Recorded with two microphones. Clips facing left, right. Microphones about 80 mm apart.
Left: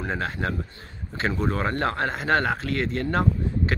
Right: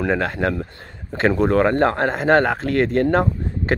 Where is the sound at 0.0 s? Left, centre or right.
Right.